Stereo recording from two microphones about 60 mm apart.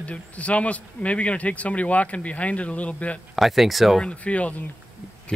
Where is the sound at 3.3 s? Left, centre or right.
Centre.